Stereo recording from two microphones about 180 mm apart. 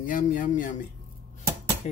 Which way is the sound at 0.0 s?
45° left (ahead or behind).